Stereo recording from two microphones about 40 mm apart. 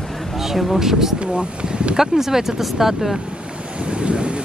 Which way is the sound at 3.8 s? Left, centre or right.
Right.